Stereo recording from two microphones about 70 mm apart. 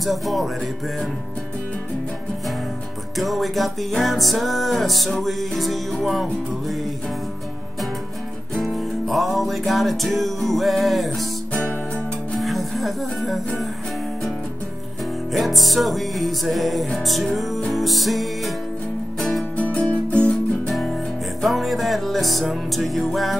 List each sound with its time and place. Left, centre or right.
0.0 s music: centre
3.2 s music: centre
8.5 s music: centre
12.4 s music: centre
15.3 s music: centre
19.5 s music: centre
21.4 s music: centre